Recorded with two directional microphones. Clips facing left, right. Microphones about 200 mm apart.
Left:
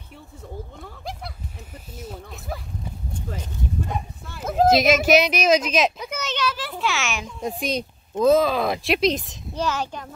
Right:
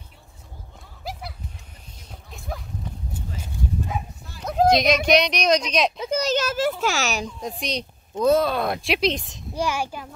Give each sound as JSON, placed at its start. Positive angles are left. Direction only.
{"t": 2.0, "sound": "a sound", "side_deg": 0}
{"t": 3.3, "sound": "bow-wow", "side_deg": 0}
{"t": 4.4, "sound": "speech", "side_deg": 5}
{"t": 5.9, "sound": "a sound", "side_deg": -35}
{"t": 7.6, "sound": "speech", "side_deg": 5}
{"t": 9.6, "sound": "a child's voice", "side_deg": -10}